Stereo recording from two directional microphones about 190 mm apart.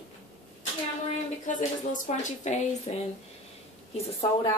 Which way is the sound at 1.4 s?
40° left (ahead or behind).